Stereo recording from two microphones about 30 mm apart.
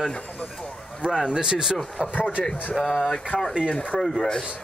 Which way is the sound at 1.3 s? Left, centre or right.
Right.